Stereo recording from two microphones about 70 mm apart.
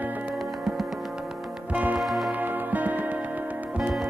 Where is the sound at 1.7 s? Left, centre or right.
Right.